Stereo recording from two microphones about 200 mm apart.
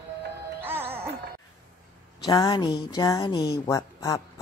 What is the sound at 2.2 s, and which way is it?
Speech, 20° left (ahead or behind).